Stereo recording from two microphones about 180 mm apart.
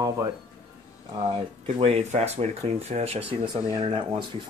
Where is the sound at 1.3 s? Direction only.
30° right (ahead or behind).